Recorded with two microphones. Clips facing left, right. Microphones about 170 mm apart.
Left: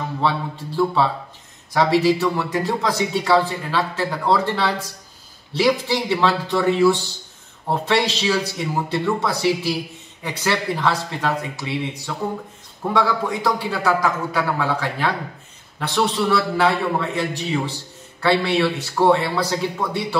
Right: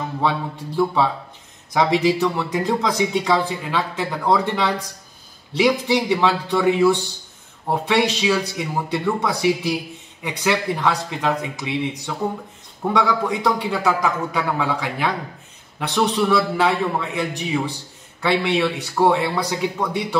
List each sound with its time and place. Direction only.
0.2 s speech: 15° right (ahead or behind)